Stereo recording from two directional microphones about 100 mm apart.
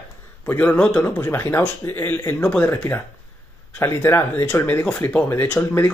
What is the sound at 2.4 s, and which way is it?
Speech, 10° left (ahead or behind).